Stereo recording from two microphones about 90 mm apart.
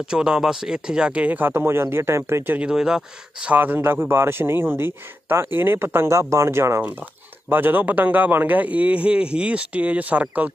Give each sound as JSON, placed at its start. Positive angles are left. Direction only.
{"t": 0.0, "sound": "a man's voice", "side_deg": -10}
{"t": 2.5, "sound": "a man's voice", "side_deg": -10}
{"t": 3.5, "sound": "a man's voice", "side_deg": -20}
{"t": 7.4, "sound": "a man's voice", "side_deg": -20}